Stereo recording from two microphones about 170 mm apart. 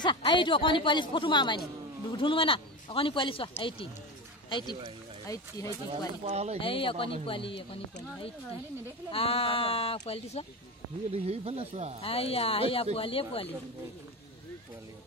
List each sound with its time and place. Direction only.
0.0 s a woman's voice: 25° left (ahead or behind)
5.9 s speech: 35° right (ahead or behind)
6.6 s speech: 30° left (ahead or behind)
9.1 s speech: 35° left (ahead or behind)
11.1 s speech: 35° right (ahead or behind)
12.0 s speech: 35° left (ahead or behind)